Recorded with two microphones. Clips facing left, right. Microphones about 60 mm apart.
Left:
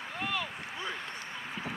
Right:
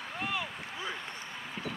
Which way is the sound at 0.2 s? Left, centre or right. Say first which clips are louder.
Left 1 dB; centre.